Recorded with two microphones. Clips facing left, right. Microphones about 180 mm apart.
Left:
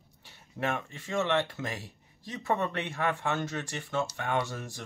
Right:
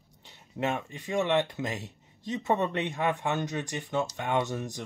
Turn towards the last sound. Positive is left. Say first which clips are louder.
# right 3 dB
turn(degrees=-20)  # may be behind; listen again after turning